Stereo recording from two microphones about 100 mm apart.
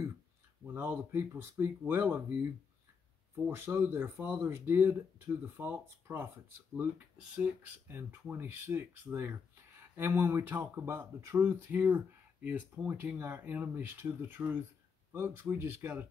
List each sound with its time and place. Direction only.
0.7 s speech: 20° right (ahead or behind)
3.4 s speech: 25° right (ahead or behind)
7.9 s speech: 20° right (ahead or behind)
10.9 s speech: 30° right (ahead or behind)